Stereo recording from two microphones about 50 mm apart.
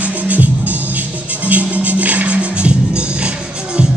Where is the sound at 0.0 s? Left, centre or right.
Right.